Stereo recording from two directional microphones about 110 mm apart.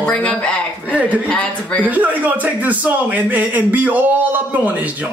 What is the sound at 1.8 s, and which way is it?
A man's voice, 15° right (ahead or behind).